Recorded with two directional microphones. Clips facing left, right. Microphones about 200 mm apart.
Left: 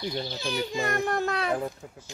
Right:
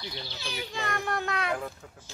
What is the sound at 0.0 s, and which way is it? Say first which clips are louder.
A child's voice: left 8 dB; 45° left (ahead or behind).